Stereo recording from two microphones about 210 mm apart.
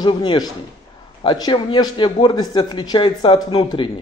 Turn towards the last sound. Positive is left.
turn(degrees=25)  # may be behind; listen again after turning